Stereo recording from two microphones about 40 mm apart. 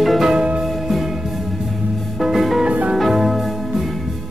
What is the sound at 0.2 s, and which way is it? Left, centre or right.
Music, centre.